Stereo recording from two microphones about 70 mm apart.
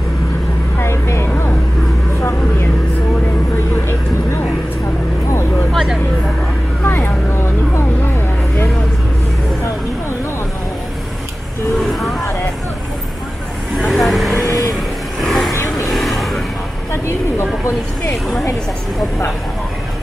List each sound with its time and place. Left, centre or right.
0.7 s vehicle: left
5.7 s vehicle: centre
6.8 s vehicle: left
11.8 s vehicle: centre
13.7 s vehicle: centre
14.4 s vehicle: left
15.2 s vehicle: centre